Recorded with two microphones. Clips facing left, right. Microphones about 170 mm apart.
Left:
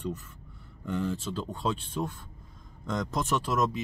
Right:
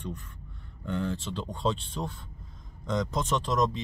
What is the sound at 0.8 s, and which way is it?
Speech, 5° left (ahead or behind).